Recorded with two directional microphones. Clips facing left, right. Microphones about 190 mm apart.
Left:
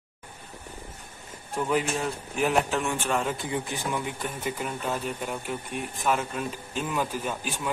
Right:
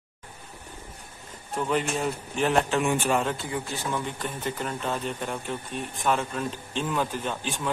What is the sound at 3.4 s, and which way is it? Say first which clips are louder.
Speech: left 1 dB; 20° left (ahead or behind).